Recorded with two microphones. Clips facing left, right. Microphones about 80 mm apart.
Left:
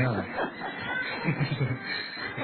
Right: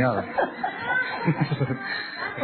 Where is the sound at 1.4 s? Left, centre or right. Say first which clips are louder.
Right 5 dB; right.